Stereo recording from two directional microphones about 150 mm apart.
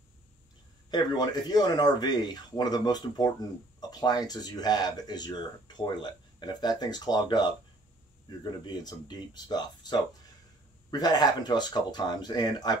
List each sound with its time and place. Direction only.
0.8 s speech: 30° left (ahead or behind)